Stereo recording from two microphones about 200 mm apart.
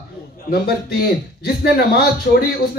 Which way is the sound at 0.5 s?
50° left (ahead or behind).